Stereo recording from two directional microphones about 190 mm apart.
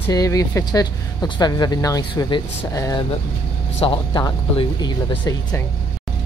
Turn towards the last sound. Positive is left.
turn(degrees=20)  # may be behind; listen again after turning